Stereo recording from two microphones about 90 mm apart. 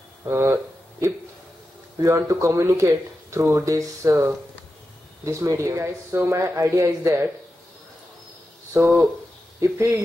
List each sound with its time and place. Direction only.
0.3 s speech: 30° right (ahead or behind)
2.0 s speech: 35° right (ahead or behind)
8.7 s speech: 25° right (ahead or behind)